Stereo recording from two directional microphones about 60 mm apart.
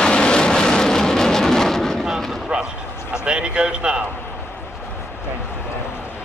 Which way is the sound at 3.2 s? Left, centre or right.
Centre.